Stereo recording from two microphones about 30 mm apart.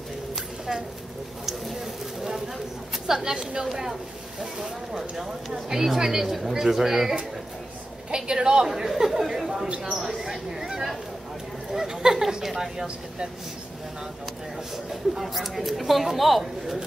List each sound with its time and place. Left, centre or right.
3.1 s a woman's voice: centre
8.1 s a woman's voice: right
8.6 s speech: centre
10.0 s a sound: centre
11.7 s a woman's voice: centre
14.9 s speech: centre